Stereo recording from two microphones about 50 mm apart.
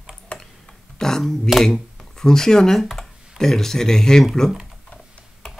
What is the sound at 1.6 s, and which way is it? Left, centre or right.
Speech, centre.